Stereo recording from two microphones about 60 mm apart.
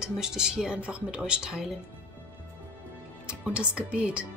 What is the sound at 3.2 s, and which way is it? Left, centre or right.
A woman's voice, centre.